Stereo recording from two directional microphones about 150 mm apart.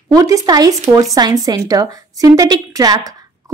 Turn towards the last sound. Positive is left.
turn(degrees=-25)  # may be behind; listen again after turning